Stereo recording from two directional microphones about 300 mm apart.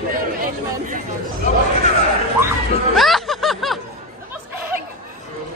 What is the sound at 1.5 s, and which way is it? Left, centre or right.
Speech, left.